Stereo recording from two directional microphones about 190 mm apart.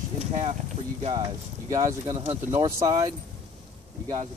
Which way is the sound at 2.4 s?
15° right (ahead or behind).